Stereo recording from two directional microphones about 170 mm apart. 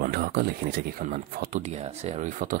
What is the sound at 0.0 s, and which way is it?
Speech, 65° right (ahead or behind).